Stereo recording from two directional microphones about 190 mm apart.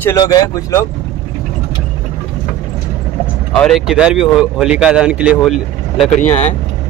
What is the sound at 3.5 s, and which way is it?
Speech, 5° left (ahead or behind).